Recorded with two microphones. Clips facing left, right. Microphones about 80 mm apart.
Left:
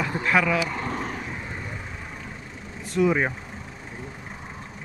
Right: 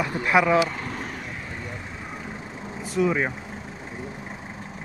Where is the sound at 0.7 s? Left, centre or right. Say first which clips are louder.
Left 3 dB; left.